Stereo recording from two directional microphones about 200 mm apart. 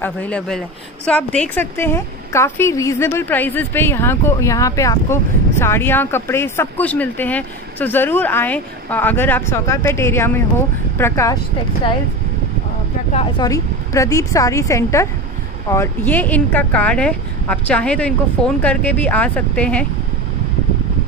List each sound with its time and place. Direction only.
0.0 s a woman's voice: 5° left (ahead or behind)
13.4 s a woman's voice: 15° left (ahead or behind)